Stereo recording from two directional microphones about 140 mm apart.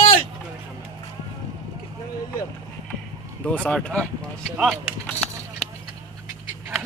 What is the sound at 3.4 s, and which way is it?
Speech, 10° left (ahead or behind).